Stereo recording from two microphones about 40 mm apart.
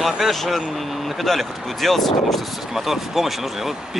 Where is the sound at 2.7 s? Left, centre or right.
Centre.